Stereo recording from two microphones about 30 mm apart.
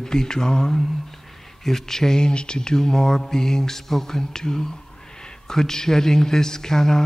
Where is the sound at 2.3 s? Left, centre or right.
Left.